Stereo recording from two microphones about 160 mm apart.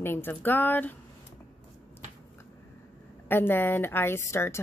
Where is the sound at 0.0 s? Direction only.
15° left (ahead or behind).